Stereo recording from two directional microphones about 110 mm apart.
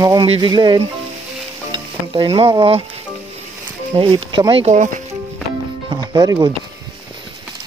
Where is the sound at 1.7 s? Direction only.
55° right (ahead or behind).